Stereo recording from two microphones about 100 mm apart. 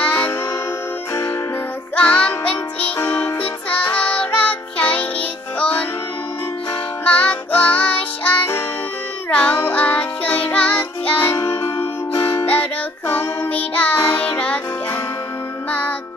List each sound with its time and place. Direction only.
0.0 s music: 15° left (ahead or behind)
2.0 s music: 10° left (ahead or behind)
3.0 s music: 25° left (ahead or behind)
3.7 s child singing: 15° left (ahead or behind)
5.6 s music: 15° left (ahead or behind)
7.1 s music: 15° left (ahead or behind)